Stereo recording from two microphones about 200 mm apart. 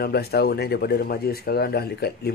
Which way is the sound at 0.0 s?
50° left (ahead or behind).